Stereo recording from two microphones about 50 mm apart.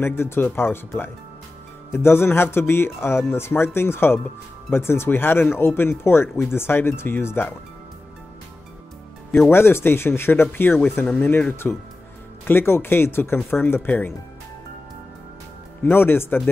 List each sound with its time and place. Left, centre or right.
0.0 s speech: left
9.5 s speech: left
11.6 s speech: left
12.4 s speech: left
15.8 s speech: left